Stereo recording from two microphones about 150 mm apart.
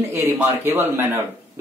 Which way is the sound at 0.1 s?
15° right (ahead or behind).